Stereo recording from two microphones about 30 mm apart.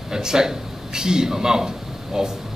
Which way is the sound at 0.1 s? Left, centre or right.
Right.